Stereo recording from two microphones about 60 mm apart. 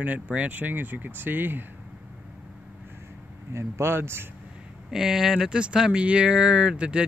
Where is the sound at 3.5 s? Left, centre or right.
Right.